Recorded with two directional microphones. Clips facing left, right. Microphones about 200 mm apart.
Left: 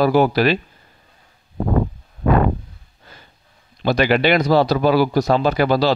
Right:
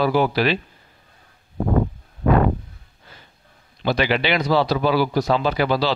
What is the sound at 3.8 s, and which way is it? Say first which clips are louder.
Speech: left 4 dB; 45° left (ahead or behind).